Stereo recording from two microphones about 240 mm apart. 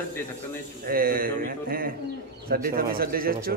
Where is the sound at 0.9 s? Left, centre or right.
Right.